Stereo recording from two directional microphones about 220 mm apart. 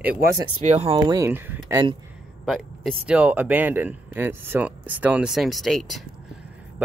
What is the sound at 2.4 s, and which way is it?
Speech, centre (ahead or behind).